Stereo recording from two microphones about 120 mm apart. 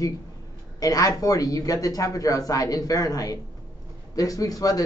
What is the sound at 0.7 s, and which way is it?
A man's voice, 30° left (ahead or behind).